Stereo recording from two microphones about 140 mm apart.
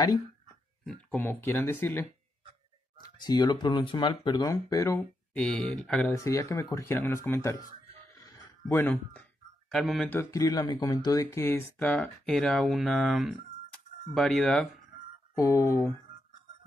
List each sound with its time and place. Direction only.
1.1 s speech: 15° left (ahead or behind)
3.0 s speech: 30° left (ahead or behind)
5.3 s speech: 10° left (ahead or behind)
6.0 s speech: 20° left (ahead or behind)
8.1 s a sound: 20° left (ahead or behind)
9.7 s speech: 5° left (ahead or behind)
10.3 s speech: 25° left (ahead or behind)
11.8 s speech: 5° left (ahead or behind)
15.3 s speech: 20° left (ahead or behind)